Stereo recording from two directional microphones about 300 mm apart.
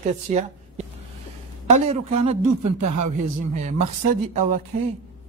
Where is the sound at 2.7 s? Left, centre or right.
Right.